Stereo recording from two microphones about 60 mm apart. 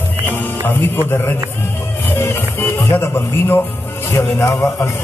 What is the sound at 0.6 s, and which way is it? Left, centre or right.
Speech, left.